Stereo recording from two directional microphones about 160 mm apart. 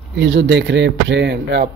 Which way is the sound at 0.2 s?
90° right.